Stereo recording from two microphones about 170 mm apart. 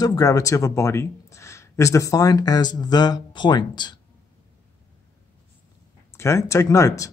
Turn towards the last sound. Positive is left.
turn(degrees=20)  # may be behind; listen again after turning